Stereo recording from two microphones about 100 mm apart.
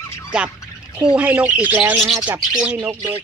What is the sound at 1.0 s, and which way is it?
Speech, 10° right (ahead or behind).